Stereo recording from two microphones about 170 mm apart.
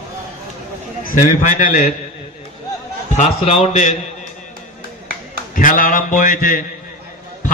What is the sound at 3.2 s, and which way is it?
Speech, 40° left (ahead or behind).